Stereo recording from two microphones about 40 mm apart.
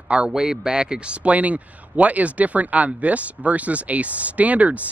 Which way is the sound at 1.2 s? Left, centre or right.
Right.